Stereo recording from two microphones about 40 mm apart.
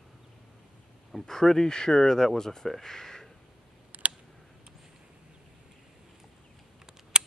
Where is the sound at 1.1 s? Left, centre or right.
Centre.